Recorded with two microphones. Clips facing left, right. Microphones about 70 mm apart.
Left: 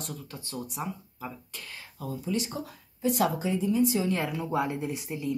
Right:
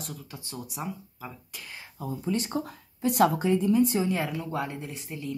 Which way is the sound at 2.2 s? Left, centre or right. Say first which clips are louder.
Right 3 dB; right.